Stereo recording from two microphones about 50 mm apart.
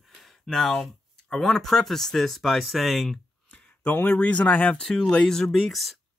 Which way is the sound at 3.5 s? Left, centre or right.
Left.